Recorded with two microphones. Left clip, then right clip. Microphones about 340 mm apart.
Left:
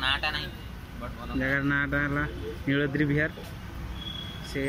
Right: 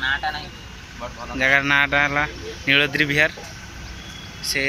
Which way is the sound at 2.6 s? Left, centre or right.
Right.